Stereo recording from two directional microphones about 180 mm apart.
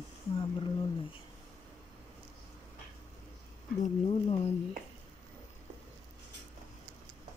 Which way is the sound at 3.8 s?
35° left (ahead or behind).